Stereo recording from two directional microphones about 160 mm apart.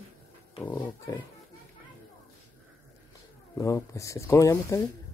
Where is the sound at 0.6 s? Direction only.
10° left (ahead or behind).